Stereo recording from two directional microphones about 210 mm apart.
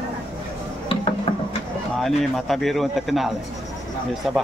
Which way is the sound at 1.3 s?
30° left (ahead or behind).